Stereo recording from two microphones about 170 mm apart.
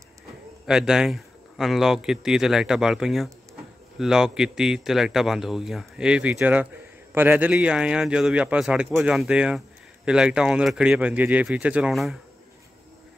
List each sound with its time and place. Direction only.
0.7 s speech: 5° right (ahead or behind)